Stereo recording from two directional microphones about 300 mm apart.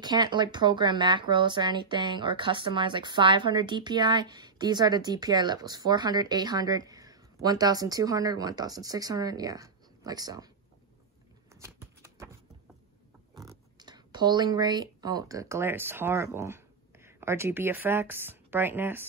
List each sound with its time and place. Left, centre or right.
0.0 s speech: centre
11.6 s a sound: centre
13.5 s speech: centre